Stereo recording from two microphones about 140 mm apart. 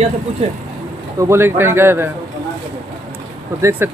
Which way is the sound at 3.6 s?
20° right (ahead or behind).